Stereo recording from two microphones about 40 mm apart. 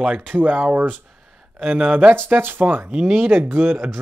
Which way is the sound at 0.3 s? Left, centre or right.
Right.